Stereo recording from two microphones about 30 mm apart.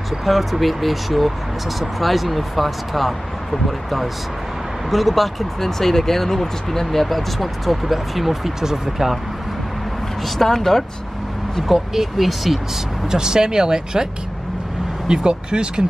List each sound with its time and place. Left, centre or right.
0.2 s speech: centre
10.5 s speech: centre
11.9 s speech: centre
13.1 s speech: right
15.0 s speech: right